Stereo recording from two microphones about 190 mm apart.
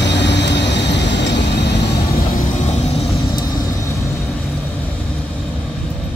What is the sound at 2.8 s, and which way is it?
Vehicle, 30° left (ahead or behind).